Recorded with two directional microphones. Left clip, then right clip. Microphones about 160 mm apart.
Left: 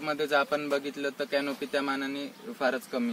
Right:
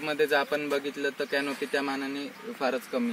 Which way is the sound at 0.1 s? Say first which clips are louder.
Right 1 dB; 20° left (ahead or behind).